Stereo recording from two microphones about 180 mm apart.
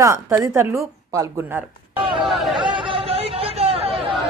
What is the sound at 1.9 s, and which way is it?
Speech, 30° right (ahead or behind).